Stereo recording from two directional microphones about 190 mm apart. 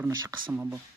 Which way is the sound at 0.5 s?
10° right (ahead or behind).